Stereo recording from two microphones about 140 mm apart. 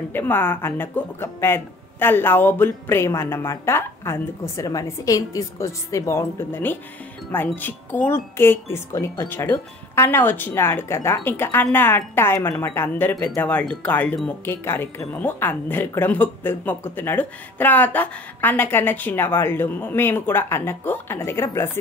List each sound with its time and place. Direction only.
0.1 s a woman's voice: 15° left (ahead or behind)